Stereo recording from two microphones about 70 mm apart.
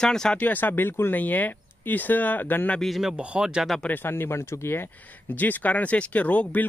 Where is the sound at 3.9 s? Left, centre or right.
Left.